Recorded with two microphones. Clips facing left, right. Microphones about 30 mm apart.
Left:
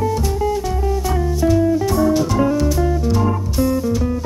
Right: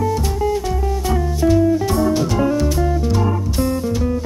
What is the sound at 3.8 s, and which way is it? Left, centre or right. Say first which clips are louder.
Music: left 1 dB; centre.